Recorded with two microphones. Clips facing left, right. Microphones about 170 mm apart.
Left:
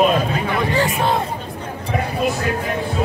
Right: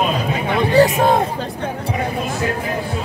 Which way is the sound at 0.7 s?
40° right (ahead or behind).